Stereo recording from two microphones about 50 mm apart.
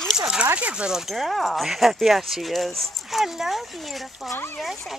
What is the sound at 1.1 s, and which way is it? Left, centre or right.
Speech, centre.